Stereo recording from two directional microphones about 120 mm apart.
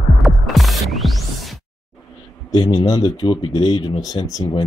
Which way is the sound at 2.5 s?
35° left (ahead or behind).